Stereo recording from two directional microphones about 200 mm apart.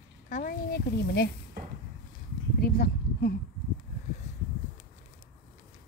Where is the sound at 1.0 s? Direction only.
55° left (ahead or behind).